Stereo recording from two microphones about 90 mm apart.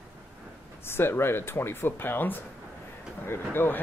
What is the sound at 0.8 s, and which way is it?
Speech, 25° left (ahead or behind).